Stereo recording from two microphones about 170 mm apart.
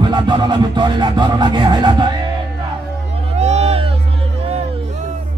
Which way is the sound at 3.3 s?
40° right (ahead or behind).